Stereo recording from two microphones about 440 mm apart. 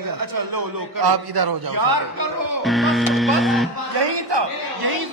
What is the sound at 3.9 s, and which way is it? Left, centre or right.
A man's voice, right.